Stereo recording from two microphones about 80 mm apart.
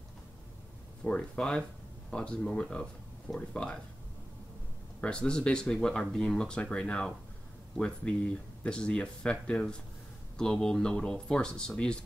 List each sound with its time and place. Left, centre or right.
1.0 s speech: centre
5.0 s speech: centre